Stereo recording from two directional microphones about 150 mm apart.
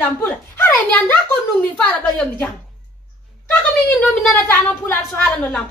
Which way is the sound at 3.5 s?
10° left (ahead or behind).